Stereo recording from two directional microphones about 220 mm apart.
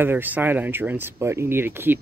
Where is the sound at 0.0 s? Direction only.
10° right (ahead or behind).